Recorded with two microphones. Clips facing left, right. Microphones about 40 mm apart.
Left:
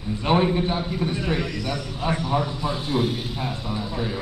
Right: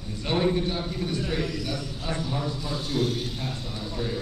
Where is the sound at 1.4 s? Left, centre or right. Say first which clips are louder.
Left 2 dB; centre.